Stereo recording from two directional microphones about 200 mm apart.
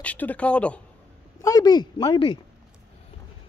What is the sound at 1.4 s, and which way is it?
Speech, 20° left (ahead or behind).